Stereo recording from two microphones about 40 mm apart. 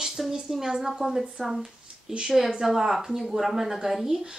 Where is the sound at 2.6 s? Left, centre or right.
Centre.